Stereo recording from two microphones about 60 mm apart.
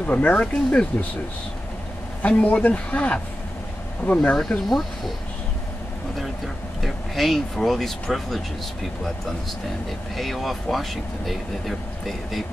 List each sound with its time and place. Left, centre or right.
0.0 s speech: left
2.2 s speech: left
4.4 s speech: centre
6.1 s speech: centre
10.1 s speech: centre